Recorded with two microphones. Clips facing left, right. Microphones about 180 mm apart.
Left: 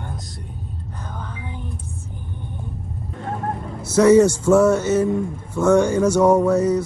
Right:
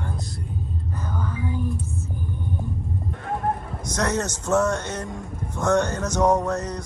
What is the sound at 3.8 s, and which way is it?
A man's voice, 5° left (ahead or behind).